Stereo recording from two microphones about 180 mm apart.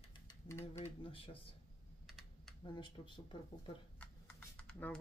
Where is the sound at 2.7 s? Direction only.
25° left (ahead or behind).